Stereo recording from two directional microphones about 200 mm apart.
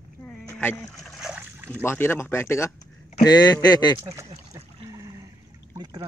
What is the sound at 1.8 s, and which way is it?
Speech, 10° left (ahead or behind).